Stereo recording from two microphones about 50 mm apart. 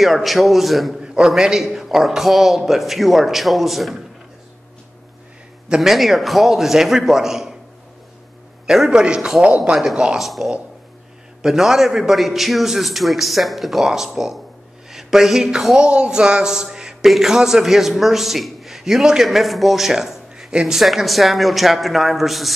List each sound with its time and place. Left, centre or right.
0.0 s a man's voice: centre
0.9 s a sound: centre
1.3 s a man's voice: centre
5.8 s a man's voice: centre
8.6 s a man's voice: centre
10.1 s a man's voice: centre
15.8 s a man's voice: centre